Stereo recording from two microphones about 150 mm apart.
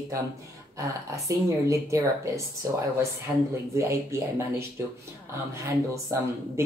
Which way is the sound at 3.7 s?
20° right (ahead or behind).